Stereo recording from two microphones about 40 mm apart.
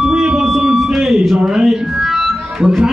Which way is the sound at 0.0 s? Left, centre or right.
Centre.